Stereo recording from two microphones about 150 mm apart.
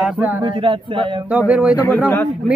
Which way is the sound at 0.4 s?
35° right (ahead or behind).